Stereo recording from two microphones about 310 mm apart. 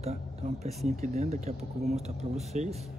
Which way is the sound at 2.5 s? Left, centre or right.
Right.